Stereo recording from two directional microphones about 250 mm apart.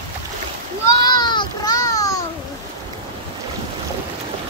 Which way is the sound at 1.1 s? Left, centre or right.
Centre.